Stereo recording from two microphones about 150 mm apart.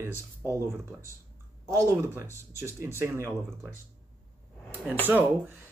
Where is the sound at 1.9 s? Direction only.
15° right (ahead or behind).